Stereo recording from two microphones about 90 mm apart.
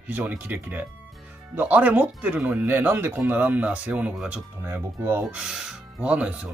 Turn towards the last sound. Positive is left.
turn(degrees=-15)  # may be behind; listen again after turning